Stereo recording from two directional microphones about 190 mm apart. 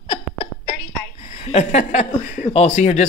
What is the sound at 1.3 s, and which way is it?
Speech, 35° left (ahead or behind).